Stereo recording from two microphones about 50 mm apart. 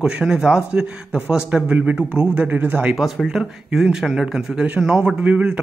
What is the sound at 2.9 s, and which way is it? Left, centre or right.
Speech, centre.